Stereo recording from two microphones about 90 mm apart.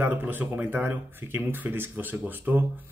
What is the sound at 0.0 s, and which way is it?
Speech, 20° right (ahead or behind).